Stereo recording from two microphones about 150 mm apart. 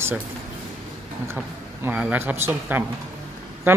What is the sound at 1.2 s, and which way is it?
A man's voice, 15° right (ahead or behind).